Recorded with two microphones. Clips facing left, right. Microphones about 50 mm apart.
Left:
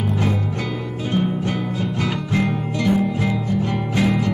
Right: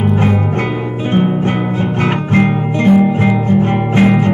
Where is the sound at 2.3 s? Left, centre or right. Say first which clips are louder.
Right 8 dB; right.